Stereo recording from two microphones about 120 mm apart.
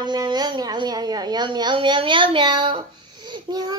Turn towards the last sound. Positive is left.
turn(degrees=-35)  # may be behind; listen again after turning